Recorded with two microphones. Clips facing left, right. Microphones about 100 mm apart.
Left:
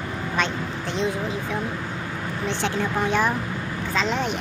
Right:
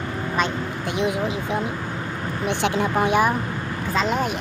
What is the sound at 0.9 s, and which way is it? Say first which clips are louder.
A woman's voice: right 2 dB; 15° right (ahead or behind).